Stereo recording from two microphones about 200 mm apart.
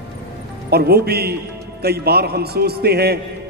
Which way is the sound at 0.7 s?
50° right (ahead or behind).